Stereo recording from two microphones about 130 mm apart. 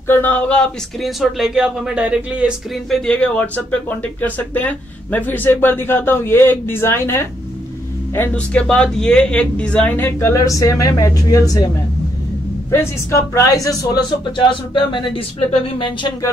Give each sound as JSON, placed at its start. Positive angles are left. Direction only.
{"t": 0.0, "sound": "speech", "side_deg": 15}
{"t": 2.9, "sound": "speech", "side_deg": 10}
{"t": 12.7, "sound": "speech", "side_deg": 25}
{"t": 14.3, "sound": "speech", "side_deg": 40}